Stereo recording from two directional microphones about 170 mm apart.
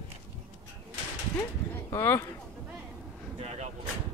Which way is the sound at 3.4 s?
35° right (ahead or behind).